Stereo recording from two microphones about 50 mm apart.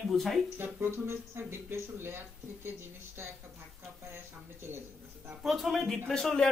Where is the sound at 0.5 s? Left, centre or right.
Right.